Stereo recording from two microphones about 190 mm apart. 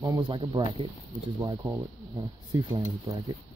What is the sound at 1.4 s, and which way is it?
Speech, 15° right (ahead or behind).